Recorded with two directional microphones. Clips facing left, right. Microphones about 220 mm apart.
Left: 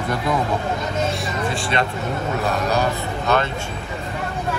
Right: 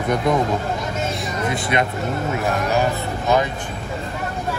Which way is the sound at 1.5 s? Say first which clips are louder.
Right 3 dB; 15° right (ahead or behind).